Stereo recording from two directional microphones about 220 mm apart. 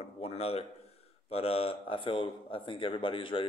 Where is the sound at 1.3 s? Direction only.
25° left (ahead or behind).